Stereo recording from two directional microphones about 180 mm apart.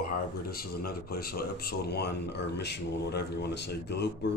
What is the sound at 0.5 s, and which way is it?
Speech, 55° left (ahead or behind).